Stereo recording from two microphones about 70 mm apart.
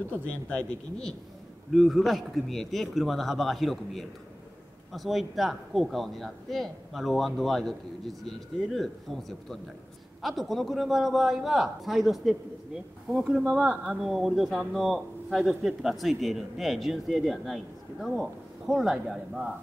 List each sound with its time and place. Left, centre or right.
0.3 s speech: centre
1.7 s speech: centre